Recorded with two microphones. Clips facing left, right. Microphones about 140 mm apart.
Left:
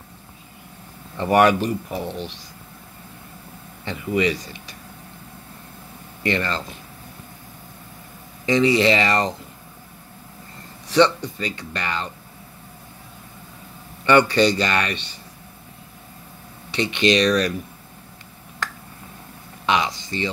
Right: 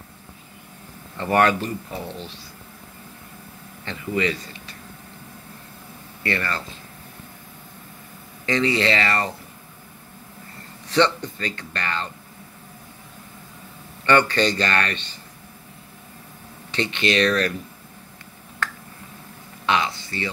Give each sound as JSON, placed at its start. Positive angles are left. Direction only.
{"t": 1.1, "sound": "speech", "side_deg": 15}
{"t": 3.8, "sound": "speech", "side_deg": 15}
{"t": 6.2, "sound": "speech", "side_deg": 20}
{"t": 8.5, "sound": "speech", "side_deg": 15}
{"t": 10.9, "sound": "speech", "side_deg": 10}
{"t": 14.0, "sound": "speech", "side_deg": 15}
{"t": 16.7, "sound": "speech", "side_deg": 15}
{"t": 19.6, "sound": "speech", "side_deg": 15}